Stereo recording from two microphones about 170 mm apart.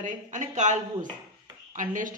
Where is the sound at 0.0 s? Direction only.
45° right (ahead or behind).